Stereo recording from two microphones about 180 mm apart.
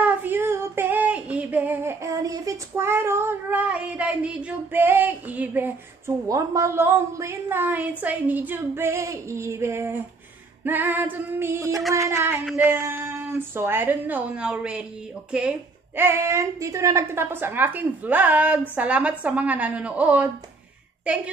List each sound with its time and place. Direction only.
0.0 s female singing: 10° right (ahead or behind)
8.0 s a woman's voice: 10° right (ahead or behind)
16.0 s a woman's voice: 15° right (ahead or behind)